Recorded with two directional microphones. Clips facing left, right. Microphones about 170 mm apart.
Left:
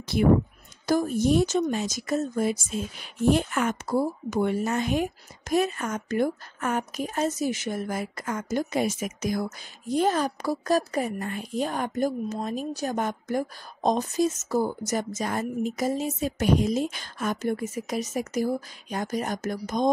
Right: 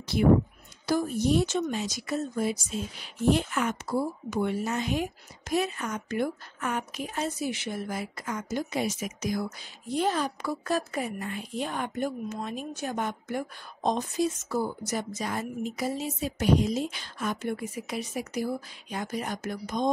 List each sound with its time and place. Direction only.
0.8 s a woman's voice: 45° left (ahead or behind)